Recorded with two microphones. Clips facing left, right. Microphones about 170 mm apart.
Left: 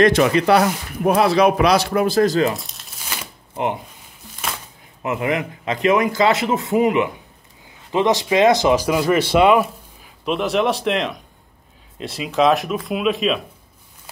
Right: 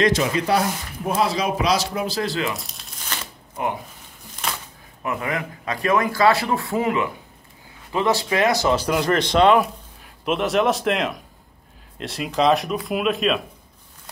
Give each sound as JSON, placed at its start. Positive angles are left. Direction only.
{"t": 0.0, "sound": "speech", "side_deg": 65}
{"t": 2.5, "sound": "speech", "side_deg": 0}
{"t": 3.1, "sound": "shuffling cards", "side_deg": 10}
{"t": 5.0, "sound": "a man's voice", "side_deg": 20}